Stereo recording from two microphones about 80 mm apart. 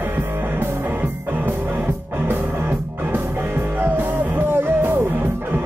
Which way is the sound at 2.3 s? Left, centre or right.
Right.